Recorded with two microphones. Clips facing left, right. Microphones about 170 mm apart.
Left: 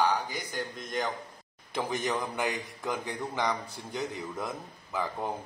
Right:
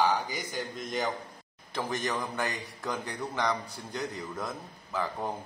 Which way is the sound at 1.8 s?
10° left (ahead or behind).